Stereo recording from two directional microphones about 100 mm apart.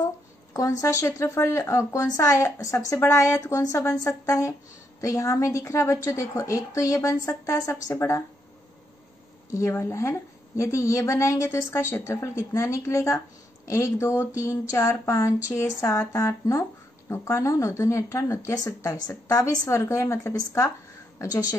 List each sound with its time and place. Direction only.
0.5 s a woman's voice: 35° left (ahead or behind)
9.5 s a woman's voice: 30° left (ahead or behind)